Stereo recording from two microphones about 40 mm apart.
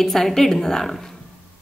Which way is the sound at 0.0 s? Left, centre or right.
Centre.